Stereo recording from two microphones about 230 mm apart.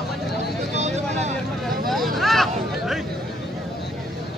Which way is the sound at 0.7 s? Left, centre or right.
Right.